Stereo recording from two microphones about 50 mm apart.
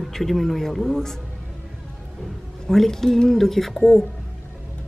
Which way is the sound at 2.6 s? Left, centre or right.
Centre.